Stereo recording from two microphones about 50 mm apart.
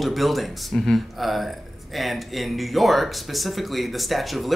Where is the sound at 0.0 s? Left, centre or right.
Centre.